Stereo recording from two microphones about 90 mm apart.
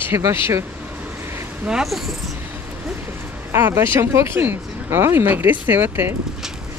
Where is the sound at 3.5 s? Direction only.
25° right (ahead or behind).